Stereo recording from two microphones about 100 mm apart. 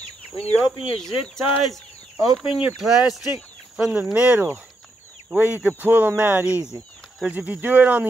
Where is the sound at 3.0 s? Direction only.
5° right (ahead or behind).